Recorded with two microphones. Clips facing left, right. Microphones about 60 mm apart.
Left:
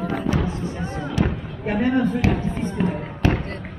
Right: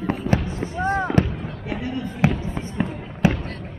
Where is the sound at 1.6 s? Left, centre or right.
Left.